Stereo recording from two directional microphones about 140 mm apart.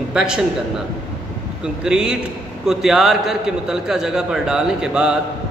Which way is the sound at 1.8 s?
5° right (ahead or behind).